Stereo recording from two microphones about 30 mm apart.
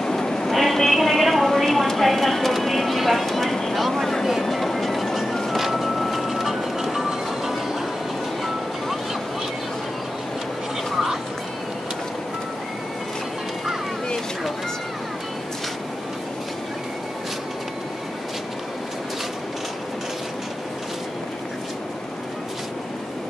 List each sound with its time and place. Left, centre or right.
0.0 s vehicle: centre
0.5 s music: centre
1.6 s vehicle: centre
1.9 s clip-clop: centre
3.9 s vehicle: centre
4.2 s train: centre
5.5 s music: centre